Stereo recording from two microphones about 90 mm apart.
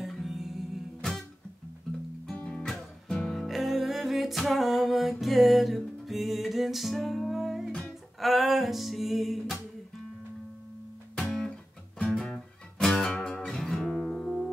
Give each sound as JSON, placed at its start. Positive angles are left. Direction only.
{"t": 0.0, "sound": "music", "side_deg": 0}
{"t": 2.2, "sound": "music", "side_deg": 5}
{"t": 11.1, "sound": "music", "side_deg": 5}